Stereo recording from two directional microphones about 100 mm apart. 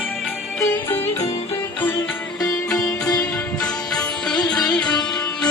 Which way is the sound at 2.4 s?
35° left (ahead or behind).